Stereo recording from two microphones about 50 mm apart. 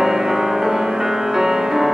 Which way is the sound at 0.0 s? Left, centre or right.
Centre.